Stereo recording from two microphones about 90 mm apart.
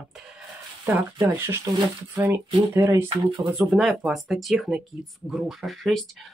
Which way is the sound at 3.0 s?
65° right (ahead or behind).